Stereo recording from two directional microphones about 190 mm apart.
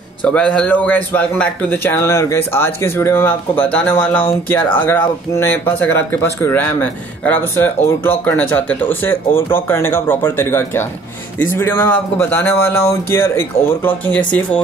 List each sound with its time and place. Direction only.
0.2 s speech: 5° left (ahead or behind)